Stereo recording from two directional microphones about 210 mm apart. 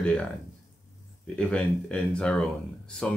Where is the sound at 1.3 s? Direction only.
5° left (ahead or behind).